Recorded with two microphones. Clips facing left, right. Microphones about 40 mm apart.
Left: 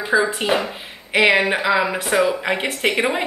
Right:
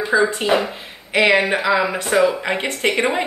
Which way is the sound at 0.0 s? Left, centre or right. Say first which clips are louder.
Right 1 dB; centre.